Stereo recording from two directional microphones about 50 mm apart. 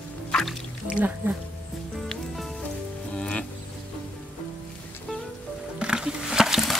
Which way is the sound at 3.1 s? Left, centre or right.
Centre.